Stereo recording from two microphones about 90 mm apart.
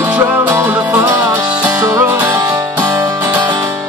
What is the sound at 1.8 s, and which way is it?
Music, 30° right (ahead or behind).